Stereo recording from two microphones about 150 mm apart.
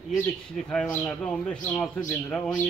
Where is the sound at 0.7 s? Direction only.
5° left (ahead or behind).